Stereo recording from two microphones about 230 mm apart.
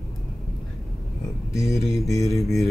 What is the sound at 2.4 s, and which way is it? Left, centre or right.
Speech, centre.